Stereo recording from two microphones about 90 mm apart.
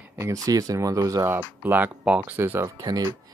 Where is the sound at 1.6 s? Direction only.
20° right (ahead or behind).